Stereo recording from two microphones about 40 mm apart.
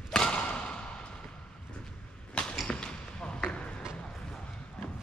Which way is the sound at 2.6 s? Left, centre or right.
Left.